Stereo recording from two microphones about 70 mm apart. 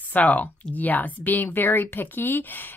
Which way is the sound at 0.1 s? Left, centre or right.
Left.